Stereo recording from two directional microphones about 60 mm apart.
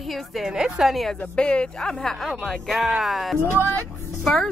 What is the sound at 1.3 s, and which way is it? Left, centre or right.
A woman's voice, centre.